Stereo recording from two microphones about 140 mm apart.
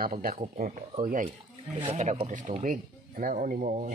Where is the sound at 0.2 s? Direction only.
90° right.